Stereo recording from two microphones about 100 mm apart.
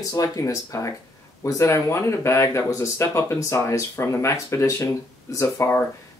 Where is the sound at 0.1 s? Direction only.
35° left (ahead or behind).